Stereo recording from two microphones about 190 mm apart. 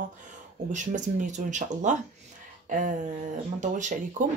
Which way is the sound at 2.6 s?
45° right (ahead or behind).